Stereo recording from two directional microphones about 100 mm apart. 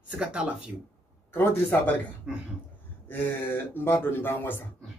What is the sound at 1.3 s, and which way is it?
Speech, 25° left (ahead or behind).